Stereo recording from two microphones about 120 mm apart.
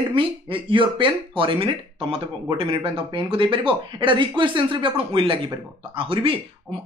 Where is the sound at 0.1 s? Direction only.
45° right (ahead or behind).